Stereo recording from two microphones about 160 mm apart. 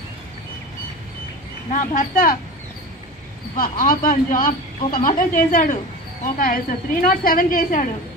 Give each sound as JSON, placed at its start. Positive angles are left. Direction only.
{"t": 1.7, "sound": "speech", "side_deg": 55}
{"t": 3.5, "sound": "speech", "side_deg": 60}